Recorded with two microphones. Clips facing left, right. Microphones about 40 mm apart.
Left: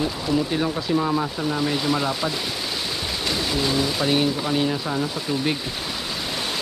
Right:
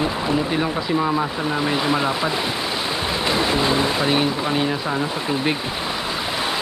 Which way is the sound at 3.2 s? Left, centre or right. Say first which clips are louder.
Right 4 dB; right.